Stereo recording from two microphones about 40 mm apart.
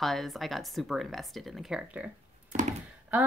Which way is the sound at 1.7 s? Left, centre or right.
Centre.